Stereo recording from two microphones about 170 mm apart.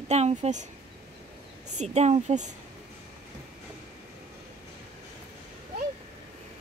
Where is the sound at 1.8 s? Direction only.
40° right (ahead or behind).